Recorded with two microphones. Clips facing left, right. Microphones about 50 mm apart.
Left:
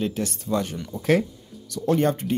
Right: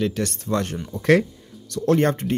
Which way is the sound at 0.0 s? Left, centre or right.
Right.